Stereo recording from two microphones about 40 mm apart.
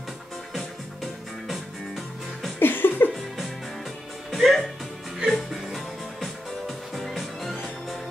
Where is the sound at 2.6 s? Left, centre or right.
Left.